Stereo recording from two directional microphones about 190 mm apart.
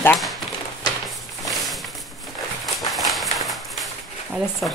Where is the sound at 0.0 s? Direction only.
Centre (ahead or behind).